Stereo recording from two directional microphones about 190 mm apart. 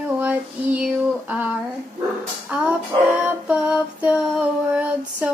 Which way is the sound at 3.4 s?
5° right (ahead or behind).